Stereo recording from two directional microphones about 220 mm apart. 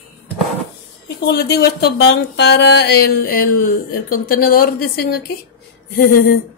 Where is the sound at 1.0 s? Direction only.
50° left (ahead or behind).